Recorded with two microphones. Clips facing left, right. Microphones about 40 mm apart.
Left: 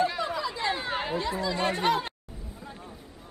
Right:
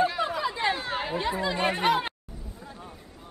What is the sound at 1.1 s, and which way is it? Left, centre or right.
Speech, centre.